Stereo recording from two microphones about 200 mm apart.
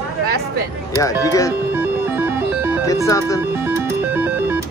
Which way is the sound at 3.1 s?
15° left (ahead or behind).